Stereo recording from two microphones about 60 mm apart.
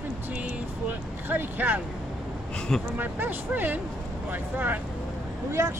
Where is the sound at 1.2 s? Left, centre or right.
Right.